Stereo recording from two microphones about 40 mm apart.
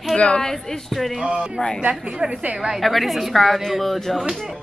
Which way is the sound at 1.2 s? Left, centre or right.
Right.